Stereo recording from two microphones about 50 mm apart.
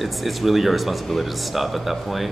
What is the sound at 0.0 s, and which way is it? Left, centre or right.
Speech, centre.